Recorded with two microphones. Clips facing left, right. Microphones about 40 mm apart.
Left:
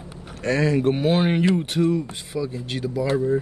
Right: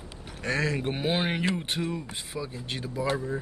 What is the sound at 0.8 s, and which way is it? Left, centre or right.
Speech, centre.